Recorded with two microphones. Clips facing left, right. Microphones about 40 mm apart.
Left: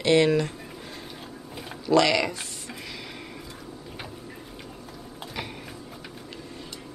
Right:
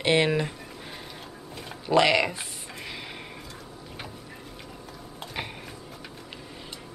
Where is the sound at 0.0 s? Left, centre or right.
Centre.